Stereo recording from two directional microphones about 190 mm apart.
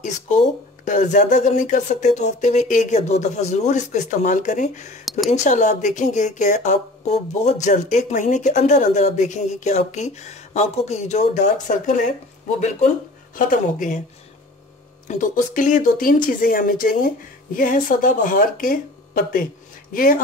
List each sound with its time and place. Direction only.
0.8 s speech: 40° left (ahead or behind)
15.0 s a woman's voice: 40° left (ahead or behind)